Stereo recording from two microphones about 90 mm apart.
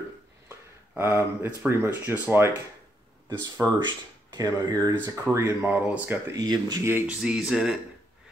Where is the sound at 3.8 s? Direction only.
55° right (ahead or behind).